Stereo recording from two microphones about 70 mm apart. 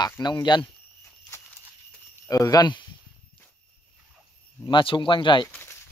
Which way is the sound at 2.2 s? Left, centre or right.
Left.